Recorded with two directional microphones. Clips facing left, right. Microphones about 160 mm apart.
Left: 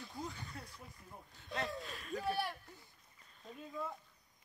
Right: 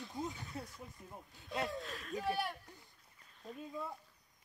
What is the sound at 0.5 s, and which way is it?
Speech, 25° right (ahead or behind).